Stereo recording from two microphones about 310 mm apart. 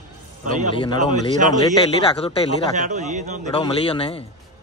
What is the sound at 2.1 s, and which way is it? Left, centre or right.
Speech, centre.